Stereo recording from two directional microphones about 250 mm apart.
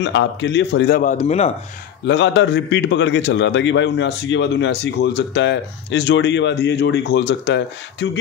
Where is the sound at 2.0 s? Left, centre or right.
Left.